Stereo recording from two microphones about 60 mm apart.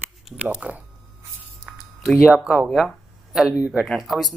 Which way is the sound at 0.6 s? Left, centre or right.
Right.